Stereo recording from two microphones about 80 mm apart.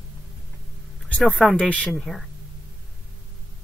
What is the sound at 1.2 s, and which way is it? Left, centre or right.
Speech, centre.